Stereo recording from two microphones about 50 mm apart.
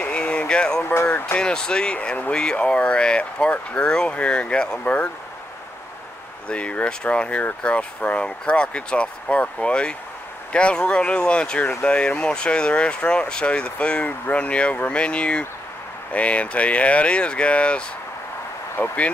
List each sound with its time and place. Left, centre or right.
0.0 s a sound: left
1.4 s speech: centre
2.0 s speech: left
2.3 s speech: centre
6.5 s speech: left
18.8 s speech: left